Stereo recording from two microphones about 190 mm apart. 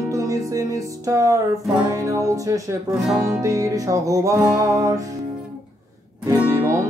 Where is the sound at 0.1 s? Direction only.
15° right (ahead or behind).